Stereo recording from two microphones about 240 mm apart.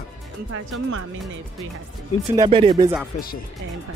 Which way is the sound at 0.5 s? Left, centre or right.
Right.